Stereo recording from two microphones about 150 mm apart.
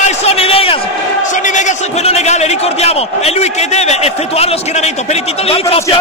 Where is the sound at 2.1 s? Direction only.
45° left (ahead or behind).